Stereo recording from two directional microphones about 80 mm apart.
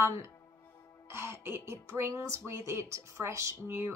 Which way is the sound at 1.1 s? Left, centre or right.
Right.